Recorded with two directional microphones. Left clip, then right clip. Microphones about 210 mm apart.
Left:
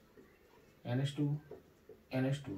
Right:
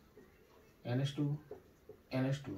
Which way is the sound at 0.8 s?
5° left (ahead or behind).